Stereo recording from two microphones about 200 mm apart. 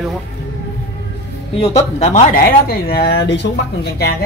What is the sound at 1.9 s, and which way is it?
Speech, 35° left (ahead or behind).